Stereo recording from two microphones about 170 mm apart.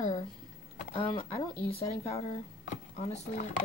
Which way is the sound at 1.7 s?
35° left (ahead or behind).